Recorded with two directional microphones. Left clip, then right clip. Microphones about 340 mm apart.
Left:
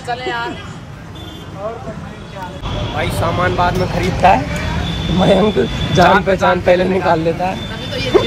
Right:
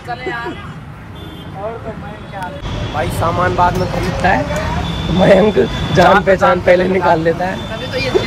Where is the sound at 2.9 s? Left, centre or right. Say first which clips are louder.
Right 2 dB; centre.